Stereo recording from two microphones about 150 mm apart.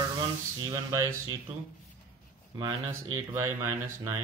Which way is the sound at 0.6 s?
20° right (ahead or behind).